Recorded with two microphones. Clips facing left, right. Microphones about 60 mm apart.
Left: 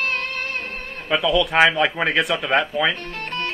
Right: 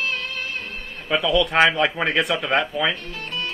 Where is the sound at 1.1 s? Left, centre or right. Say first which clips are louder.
Left 1 dB; centre.